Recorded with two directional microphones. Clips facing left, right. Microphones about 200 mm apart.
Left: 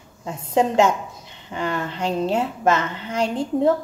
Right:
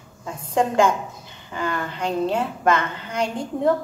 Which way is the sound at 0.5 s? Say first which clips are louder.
Left 1 dB; 25° left (ahead or behind).